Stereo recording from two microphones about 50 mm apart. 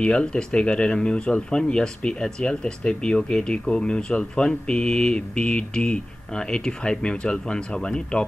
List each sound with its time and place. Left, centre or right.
0.0 s speech: centre